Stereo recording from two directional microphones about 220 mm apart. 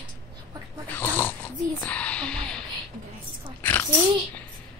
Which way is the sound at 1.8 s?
5° left (ahead or behind).